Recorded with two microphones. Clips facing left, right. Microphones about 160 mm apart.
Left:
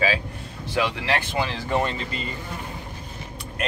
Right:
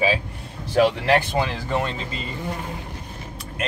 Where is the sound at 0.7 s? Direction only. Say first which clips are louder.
Right 7 dB; 45° right (ahead or behind).